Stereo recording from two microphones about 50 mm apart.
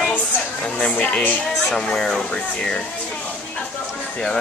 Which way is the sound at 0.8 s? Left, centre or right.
Left.